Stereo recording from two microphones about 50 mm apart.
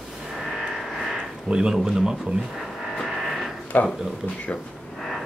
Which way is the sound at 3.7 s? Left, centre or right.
Left.